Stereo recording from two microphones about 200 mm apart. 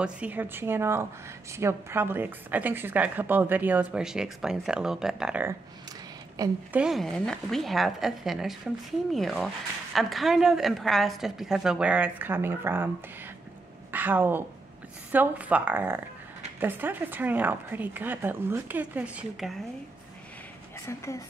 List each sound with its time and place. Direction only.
0.0 s a woman's voice: 5° right (ahead or behind)
6.4 s a woman's voice: 20° right (ahead or behind)
6.7 s a woman's voice: 5° right (ahead or behind)
13.9 s a woman's voice: 10° right (ahead or behind)